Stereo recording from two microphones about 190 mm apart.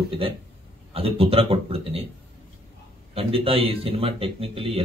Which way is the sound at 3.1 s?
30° right (ahead or behind).